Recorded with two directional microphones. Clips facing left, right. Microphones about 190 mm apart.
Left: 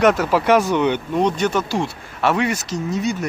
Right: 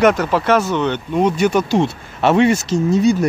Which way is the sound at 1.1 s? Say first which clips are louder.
Right 6 dB; 5° right (ahead or behind).